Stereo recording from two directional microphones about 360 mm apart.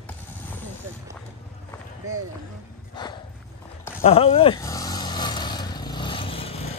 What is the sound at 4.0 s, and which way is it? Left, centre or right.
Vehicle, centre.